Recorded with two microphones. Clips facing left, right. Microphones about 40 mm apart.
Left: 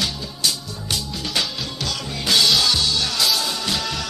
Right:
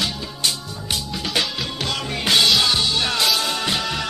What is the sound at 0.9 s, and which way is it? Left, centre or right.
Music, right.